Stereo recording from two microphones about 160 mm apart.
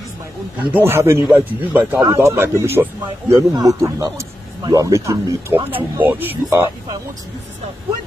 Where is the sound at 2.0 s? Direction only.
20° right (ahead or behind).